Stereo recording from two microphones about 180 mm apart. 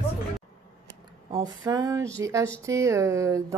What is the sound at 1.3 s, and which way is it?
Speech, 20° right (ahead or behind).